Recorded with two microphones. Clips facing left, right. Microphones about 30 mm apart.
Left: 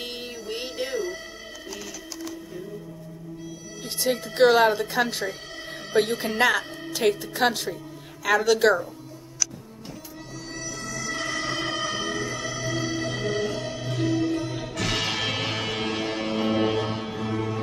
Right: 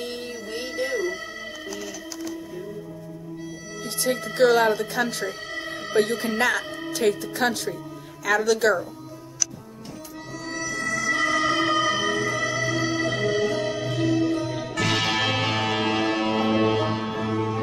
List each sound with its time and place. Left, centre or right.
0.0 s music: centre
3.8 s speech: centre
4.3 s speech: centre
5.3 s music: centre
5.9 s speech: centre
6.6 s music: centre
6.9 s speech: centre
10.4 s music: centre
10.8 s music: right
11.1 s music: centre